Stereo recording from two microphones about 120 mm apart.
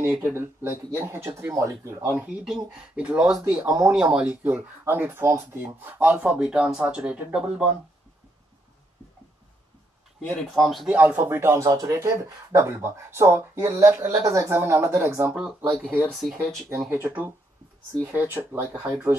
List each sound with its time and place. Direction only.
0.0 s speech: 20° right (ahead or behind)
2.4 s speech: 5° right (ahead or behind)
3.6 s speech: 30° right (ahead or behind)
3.9 s speech: 10° right (ahead or behind)
10.5 s speech: centre (ahead or behind)
10.9 s speech: 15° right (ahead or behind)
16.1 s speech: centre (ahead or behind)
16.9 s speech: 15° right (ahead or behind)